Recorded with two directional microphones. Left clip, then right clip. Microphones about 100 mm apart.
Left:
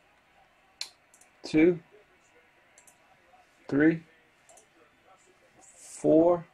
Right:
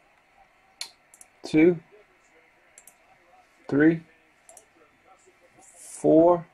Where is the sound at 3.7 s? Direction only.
35° right (ahead or behind).